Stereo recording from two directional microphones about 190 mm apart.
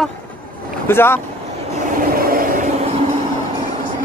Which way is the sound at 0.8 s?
10° left (ahead or behind).